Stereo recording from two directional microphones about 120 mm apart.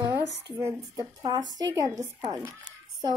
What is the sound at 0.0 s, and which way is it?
Speech, 25° right (ahead or behind).